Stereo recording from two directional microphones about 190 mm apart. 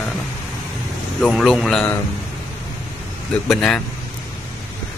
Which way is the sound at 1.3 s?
Centre (ahead or behind).